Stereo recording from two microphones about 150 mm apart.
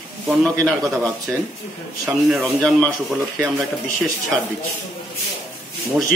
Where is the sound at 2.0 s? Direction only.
Centre (ahead or behind).